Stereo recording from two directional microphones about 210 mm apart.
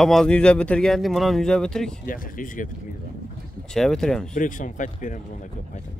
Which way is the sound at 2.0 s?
40° left (ahead or behind).